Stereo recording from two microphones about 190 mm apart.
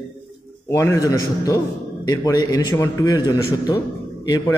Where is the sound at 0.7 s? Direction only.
15° left (ahead or behind).